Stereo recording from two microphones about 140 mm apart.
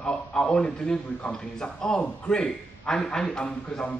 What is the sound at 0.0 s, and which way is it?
A man's voice, 5° left (ahead or behind).